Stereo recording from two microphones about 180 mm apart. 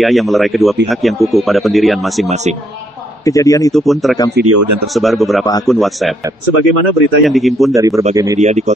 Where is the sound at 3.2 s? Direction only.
20° left (ahead or behind).